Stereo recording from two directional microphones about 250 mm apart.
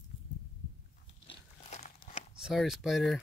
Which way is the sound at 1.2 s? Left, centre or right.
Left.